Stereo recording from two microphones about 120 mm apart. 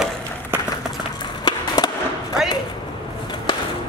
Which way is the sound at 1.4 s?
35° left (ahead or behind).